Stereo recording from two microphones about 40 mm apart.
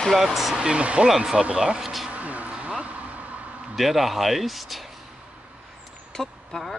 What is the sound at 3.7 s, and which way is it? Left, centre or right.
Speech, centre.